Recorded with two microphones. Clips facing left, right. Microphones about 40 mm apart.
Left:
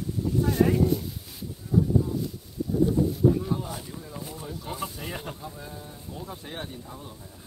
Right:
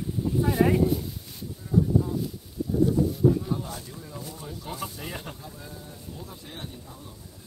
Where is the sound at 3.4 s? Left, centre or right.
Centre.